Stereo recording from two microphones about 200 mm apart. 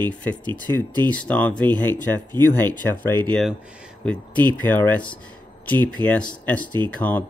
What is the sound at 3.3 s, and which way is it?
Speech, 5° left (ahead or behind).